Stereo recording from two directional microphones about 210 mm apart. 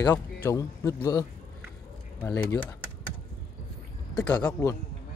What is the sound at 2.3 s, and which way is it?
Speech, 15° left (ahead or behind).